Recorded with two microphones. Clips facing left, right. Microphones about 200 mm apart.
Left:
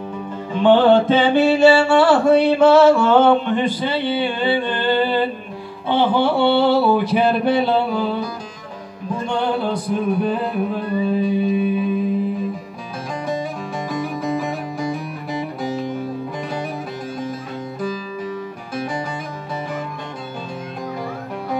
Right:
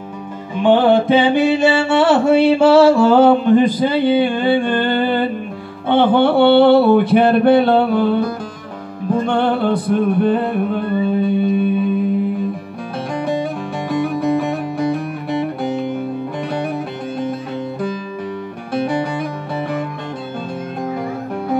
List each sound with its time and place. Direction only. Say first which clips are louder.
0.6 s mantra: even; 10° right (ahead or behind); by 4.1 s 45° right (ahead or behind)
4.2 s humming: right 4 dB; 45° right (ahead or behind)
5.9 s a sound: right 4 dB; 55° right (ahead or behind)
10.0 s music: right 3 dB; centre (ahead or behind)
18.7 s music: right 8 dB; 60° right (ahead or behind)